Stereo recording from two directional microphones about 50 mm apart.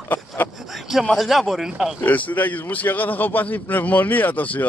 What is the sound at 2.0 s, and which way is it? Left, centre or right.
A man's voice, left.